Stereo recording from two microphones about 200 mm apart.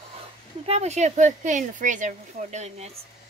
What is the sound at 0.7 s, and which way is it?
Speech, 35° right (ahead or behind).